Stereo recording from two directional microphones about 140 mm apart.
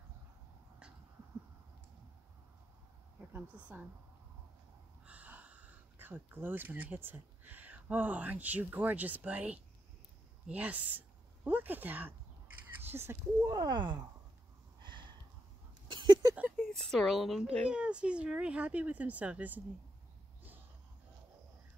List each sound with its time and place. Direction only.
3.2 s a woman's voice: 10° right (ahead or behind)
5.0 s speech: 10° right (ahead or behind)
13.5 s speech: 30° right (ahead or behind)
14.8 s a sound: 35° right (ahead or behind)
16.3 s a sound: 10° right (ahead or behind)
16.7 s speech: centre (ahead or behind)